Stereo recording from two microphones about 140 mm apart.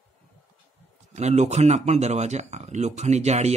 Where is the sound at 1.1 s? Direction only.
55° right (ahead or behind).